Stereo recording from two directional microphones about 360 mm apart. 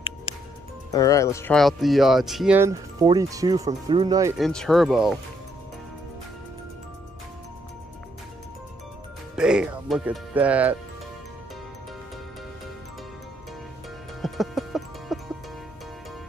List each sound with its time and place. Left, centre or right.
0.0 s music: centre
0.9 s speech: centre
9.3 s speech: centre
14.2 s music: centre